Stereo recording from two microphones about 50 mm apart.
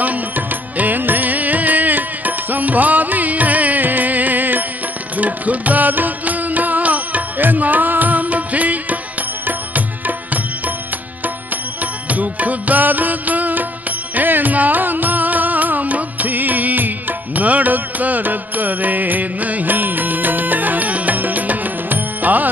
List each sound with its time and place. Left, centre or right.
0.0 s music: right
11.8 s music: right